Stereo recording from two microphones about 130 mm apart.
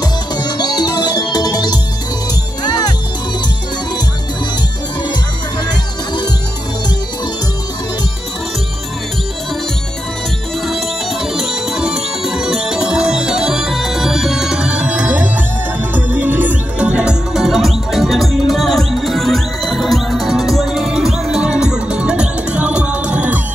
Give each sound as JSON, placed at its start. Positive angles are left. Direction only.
{"t": 0.0, "sound": "music", "side_deg": 30}
{"t": 5.7, "sound": "music", "side_deg": 35}
{"t": 11.3, "sound": "music", "side_deg": -5}